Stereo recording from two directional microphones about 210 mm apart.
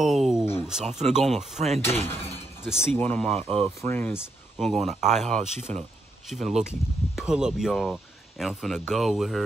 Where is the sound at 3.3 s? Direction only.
30° right (ahead or behind).